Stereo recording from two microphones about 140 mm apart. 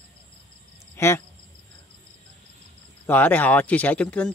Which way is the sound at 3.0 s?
15° left (ahead or behind).